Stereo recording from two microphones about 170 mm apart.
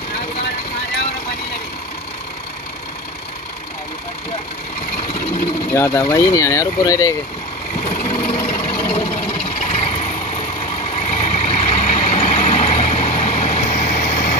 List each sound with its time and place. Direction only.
5.8 s speech: 15° left (ahead or behind)
8.8 s sewing machine: 35° left (ahead or behind)
11.1 s vehicle: 40° left (ahead or behind)